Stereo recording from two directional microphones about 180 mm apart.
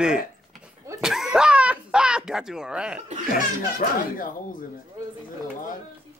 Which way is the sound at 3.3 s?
50° left (ahead or behind).